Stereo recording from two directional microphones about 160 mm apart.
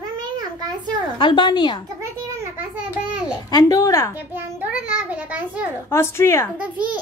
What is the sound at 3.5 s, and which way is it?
Speech, 20° left (ahead or behind).